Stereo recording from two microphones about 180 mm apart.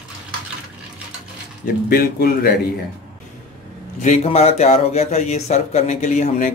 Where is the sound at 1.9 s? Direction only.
55° left (ahead or behind).